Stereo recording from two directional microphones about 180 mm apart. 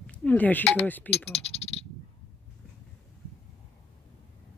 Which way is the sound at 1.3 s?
35° left (ahead or behind).